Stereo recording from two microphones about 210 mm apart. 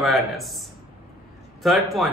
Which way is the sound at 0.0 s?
Centre (ahead or behind).